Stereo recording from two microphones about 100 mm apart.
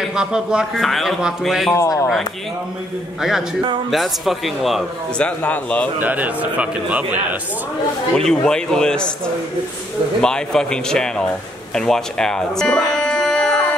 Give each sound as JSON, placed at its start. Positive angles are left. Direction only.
{"t": 0.0, "sound": "a man's voice", "side_deg": -10}
{"t": 1.8, "sound": "speech", "side_deg": 30}
{"t": 3.2, "sound": "speech", "side_deg": -5}
{"t": 5.1, "sound": "speech", "side_deg": 15}
{"t": 5.9, "sound": "a man's voice", "side_deg": -15}
{"t": 8.1, "sound": "speech", "side_deg": 5}